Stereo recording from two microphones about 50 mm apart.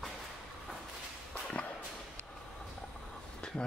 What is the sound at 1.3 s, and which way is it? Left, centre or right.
Whip, left.